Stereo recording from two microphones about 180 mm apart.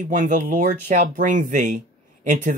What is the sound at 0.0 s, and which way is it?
Speech, 45° right (ahead or behind).